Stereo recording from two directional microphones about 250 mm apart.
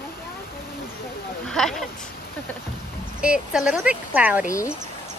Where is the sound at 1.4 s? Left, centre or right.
Centre.